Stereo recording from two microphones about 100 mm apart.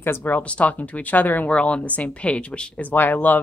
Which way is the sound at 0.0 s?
20° left (ahead or behind).